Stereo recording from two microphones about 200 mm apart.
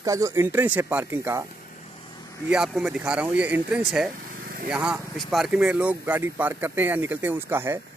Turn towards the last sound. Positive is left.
turn(degrees=-10)  # may be behind; listen again after turning